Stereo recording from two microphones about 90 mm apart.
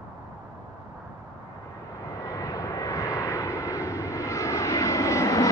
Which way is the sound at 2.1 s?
40° left (ahead or behind).